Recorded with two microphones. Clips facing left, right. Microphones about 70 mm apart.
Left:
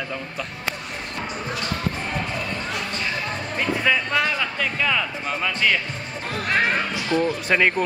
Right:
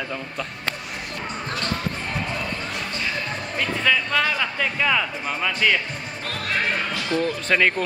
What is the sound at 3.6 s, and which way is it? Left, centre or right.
Music, centre.